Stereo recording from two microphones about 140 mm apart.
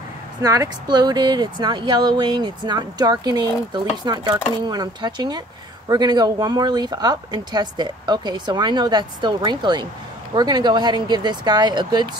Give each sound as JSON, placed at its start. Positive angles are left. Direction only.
{"t": 0.4, "sound": "speech", "side_deg": -25}